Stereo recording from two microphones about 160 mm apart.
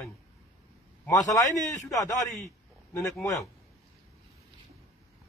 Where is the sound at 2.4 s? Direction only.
20° left (ahead or behind).